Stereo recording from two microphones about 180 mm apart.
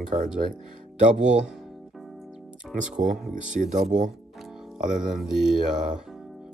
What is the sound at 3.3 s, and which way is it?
Speech, 45° right (ahead or behind).